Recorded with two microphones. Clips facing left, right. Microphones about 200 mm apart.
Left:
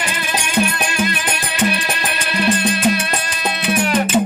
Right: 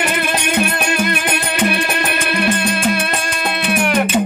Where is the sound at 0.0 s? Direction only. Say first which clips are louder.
Right 5 dB; 60° right (ahead or behind).